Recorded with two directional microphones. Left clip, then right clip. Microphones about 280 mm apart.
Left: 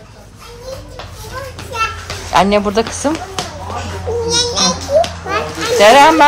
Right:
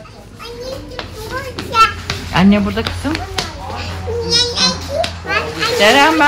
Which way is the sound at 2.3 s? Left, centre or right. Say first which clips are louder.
Left 5 dB; centre.